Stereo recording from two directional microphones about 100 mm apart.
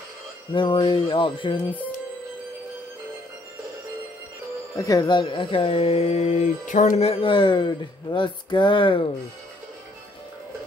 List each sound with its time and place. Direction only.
0.5 s speech: 55° left (ahead or behind)
4.7 s speech: 35° left (ahead or behind); by 6.4 s 90° left
7.0 s speech: 75° left (ahead or behind); by 9.0 s 55° left (ahead or behind)